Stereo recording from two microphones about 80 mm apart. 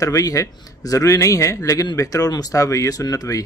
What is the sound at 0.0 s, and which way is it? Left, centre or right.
Speech, left.